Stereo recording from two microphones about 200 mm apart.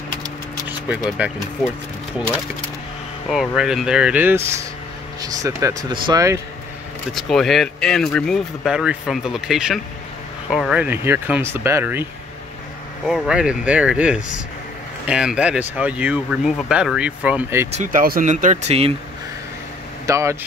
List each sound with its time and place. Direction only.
0.7 s speech: 5° right (ahead or behind)
3.3 s speech: centre (ahead or behind)
7.1 s speech: centre (ahead or behind)
17.6 s speech: 40° right (ahead or behind)
20.1 s speech: 15° right (ahead or behind)